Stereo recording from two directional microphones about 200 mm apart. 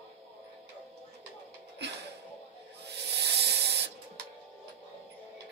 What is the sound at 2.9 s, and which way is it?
Rub, 55° right (ahead or behind).